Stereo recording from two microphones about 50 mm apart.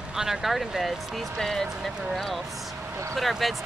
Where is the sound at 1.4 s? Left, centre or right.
Centre.